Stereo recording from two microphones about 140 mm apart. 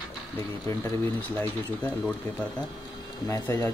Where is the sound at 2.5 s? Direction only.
30° left (ahead or behind).